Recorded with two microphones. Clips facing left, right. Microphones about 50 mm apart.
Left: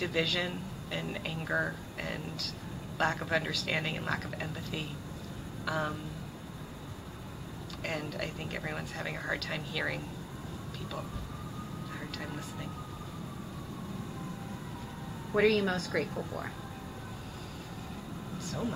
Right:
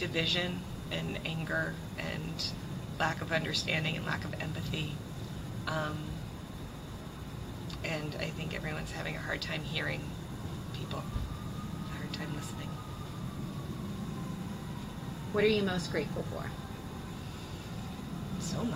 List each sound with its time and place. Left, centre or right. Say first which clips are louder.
0.0 s speech: left 2 dB; centre
7.8 s speech: left 1 dB; centre
15.3 s speech: left 2 dB; centre
18.4 s speech: even; centre